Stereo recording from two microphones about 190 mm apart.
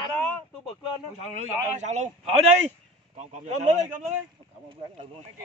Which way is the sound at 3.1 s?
35° right (ahead or behind).